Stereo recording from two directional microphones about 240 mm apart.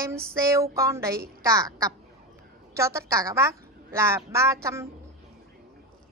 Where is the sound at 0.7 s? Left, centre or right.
Centre.